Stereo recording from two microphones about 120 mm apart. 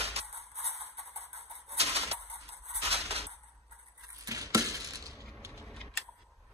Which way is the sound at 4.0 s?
30° right (ahead or behind).